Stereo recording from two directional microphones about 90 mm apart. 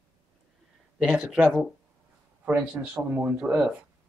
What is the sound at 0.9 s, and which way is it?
A man's voice, 10° right (ahead or behind).